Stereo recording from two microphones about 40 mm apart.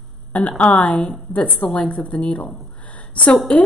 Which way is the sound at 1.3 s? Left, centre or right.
Left.